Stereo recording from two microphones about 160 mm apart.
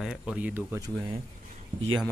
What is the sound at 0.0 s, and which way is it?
Speech, 5° right (ahead or behind).